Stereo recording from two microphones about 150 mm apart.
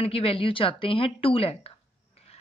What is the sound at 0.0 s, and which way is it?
A woman's voice, 40° left (ahead or behind).